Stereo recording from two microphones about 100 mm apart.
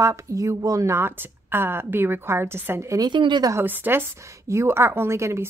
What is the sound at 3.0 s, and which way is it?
Speech, 50° right (ahead or behind).